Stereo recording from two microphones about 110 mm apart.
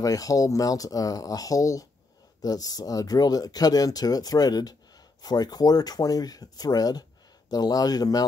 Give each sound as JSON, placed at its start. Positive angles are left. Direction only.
{"t": 0.0, "sound": "speech", "side_deg": 30}